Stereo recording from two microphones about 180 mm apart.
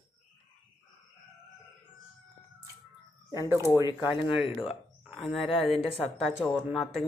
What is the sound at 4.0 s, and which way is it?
Speech, 10° right (ahead or behind).